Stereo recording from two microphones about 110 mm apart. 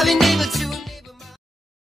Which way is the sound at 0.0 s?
Centre (ahead or behind).